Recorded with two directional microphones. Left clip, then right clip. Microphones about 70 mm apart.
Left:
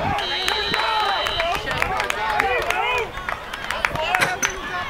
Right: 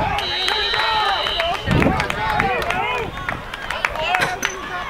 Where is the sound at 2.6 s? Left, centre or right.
Left.